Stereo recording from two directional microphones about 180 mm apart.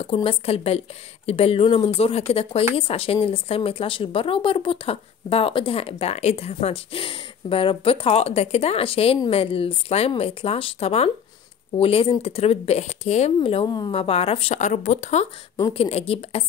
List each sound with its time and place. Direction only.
0.0 s a woman's voice: 30° left (ahead or behind)